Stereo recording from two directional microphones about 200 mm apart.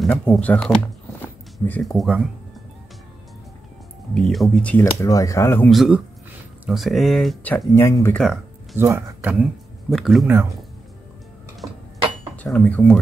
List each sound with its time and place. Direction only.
0.0 s speech: 5° left (ahead or behind)
4.1 s speech: centre (ahead or behind)
5.0 s speech: 15° left (ahead or behind)
5.7 s speech: centre (ahead or behind); by 8.2 s 15° left (ahead or behind)
8.7 s speech: 10° right (ahead or behind)
12.4 s speech: 5° left (ahead or behind)